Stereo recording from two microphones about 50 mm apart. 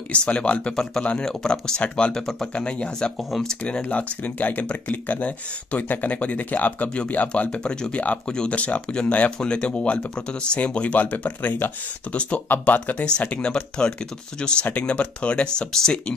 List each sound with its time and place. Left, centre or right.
0.1 s speech: left
3.2 s speech: centre
3.8 s speech: left
7.7 s speech: centre